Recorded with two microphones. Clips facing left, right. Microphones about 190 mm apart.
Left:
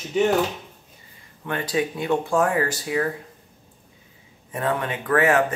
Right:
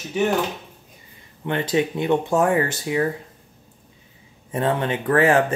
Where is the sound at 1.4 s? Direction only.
25° right (ahead or behind).